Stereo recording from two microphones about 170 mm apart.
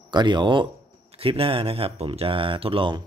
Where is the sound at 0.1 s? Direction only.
25° right (ahead or behind).